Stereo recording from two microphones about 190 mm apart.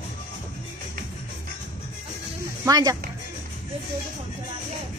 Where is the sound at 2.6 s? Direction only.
20° right (ahead or behind).